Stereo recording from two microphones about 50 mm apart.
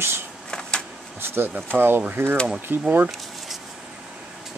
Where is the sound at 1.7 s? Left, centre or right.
Right.